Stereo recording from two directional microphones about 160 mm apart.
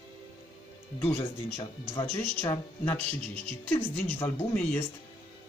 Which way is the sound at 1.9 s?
20° left (ahead or behind).